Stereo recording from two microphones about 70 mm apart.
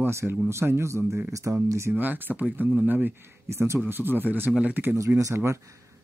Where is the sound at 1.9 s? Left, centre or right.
Right.